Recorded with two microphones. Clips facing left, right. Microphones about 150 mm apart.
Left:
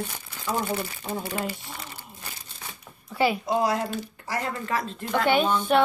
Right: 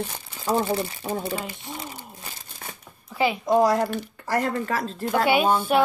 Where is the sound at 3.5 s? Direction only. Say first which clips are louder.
Right 5 dB; 45° right (ahead or behind).